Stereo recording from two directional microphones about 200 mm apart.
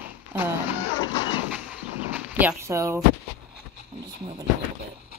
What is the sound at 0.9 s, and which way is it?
Music, 20° left (ahead or behind).